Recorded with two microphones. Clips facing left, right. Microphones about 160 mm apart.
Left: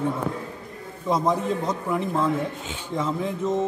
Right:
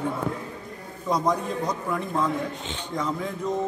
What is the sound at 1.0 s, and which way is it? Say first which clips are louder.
Speech: left 2 dB; 25° left (ahead or behind).